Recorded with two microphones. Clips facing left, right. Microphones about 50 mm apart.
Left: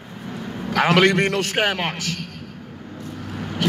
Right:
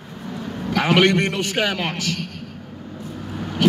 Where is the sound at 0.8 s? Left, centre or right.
Left.